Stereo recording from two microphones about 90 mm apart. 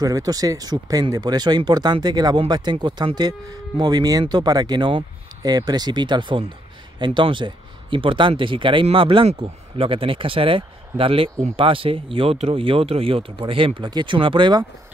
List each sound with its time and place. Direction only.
0.0 s speech: 45° right (ahead or behind); by 5.0 s 60° right (ahead or behind)
5.4 s speech: 45° right (ahead or behind); by 13.8 s 80° right
13.8 s speech: 60° right (ahead or behind)